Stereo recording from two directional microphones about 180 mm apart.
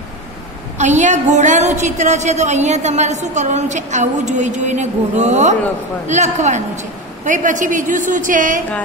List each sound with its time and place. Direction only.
0.7 s a woman's voice: 40° right (ahead or behind)